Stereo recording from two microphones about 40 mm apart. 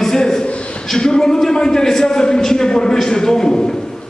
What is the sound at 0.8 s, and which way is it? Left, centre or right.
A man's voice, centre.